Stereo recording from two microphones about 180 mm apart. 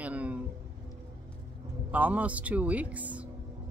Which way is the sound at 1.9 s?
10° right (ahead or behind).